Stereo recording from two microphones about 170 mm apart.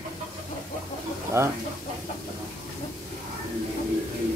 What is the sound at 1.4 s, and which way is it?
Speech, 15° right (ahead or behind).